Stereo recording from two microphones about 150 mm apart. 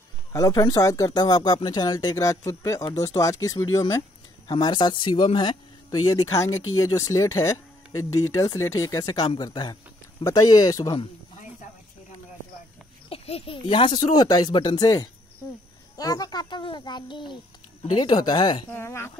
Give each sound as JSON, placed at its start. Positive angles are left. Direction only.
{"t": 0.3, "sound": "speech", "side_deg": 25}
{"t": 13.1, "sound": "speech", "side_deg": 40}
{"t": 18.7, "sound": "speech", "side_deg": 15}